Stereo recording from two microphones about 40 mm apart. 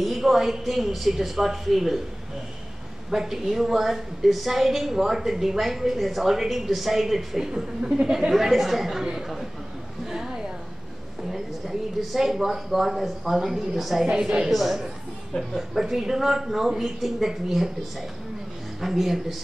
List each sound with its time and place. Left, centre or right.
0.0 s speech: centre
3.1 s a woman's voice: centre
8.3 s speech: centre
10.0 s a sound: centre
11.3 s speech: centre
14.0 s a woman's voice: right
14.5 s speech: centre
15.3 s speech: left
15.7 s a woman's voice: centre
18.8 s speech: centre